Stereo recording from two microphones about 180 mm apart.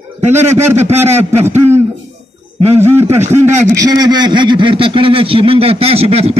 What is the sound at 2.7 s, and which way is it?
A man's voice, 15° right (ahead or behind).